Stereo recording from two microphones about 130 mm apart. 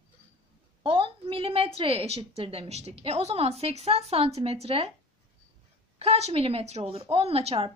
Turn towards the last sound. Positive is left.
turn(degrees=-50)  # may be behind; listen again after turning